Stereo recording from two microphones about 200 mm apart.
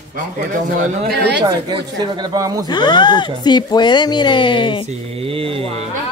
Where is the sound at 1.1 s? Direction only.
55° right (ahead or behind).